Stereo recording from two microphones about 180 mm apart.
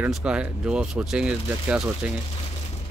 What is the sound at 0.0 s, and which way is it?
Speech, 5° right (ahead or behind).